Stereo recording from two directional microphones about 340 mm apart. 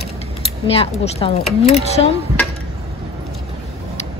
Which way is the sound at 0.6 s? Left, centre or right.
Centre.